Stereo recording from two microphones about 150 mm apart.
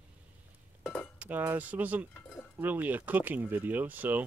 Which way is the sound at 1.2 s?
10° right (ahead or behind).